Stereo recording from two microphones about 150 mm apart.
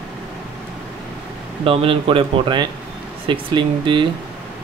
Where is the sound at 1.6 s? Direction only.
35° right (ahead or behind).